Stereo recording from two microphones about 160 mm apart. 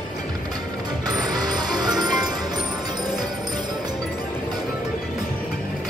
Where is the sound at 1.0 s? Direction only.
25° right (ahead or behind).